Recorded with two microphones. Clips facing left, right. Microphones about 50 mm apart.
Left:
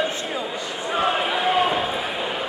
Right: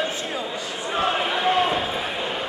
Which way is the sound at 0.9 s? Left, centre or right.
Centre.